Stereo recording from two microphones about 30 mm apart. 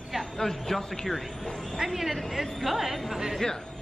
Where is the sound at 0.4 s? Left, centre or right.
Centre.